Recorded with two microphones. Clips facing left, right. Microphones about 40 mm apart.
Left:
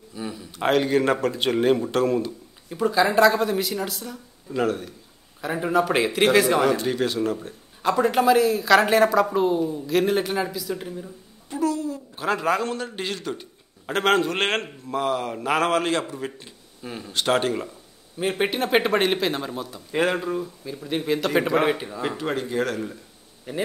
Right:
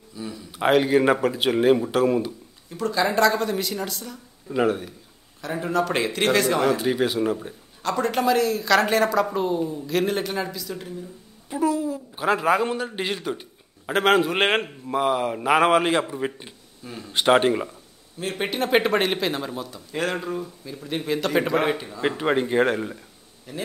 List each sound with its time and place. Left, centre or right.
0.1 s a sound: centre
0.5 s a woman's voice: centre
2.7 s a woman's voice: centre
4.5 s a woman's voice: centre
5.4 s a man's voice: centre
6.8 s a woman's voice: centre
7.8 s a woman's voice: centre
11.5 s a woman's voice: centre
18.4 s a woman's voice: centre
19.9 s a man's voice: centre
20.2 s a woman's voice: centre
21.7 s a man's voice: centre
22.0 s speech: right
23.5 s a man's voice: left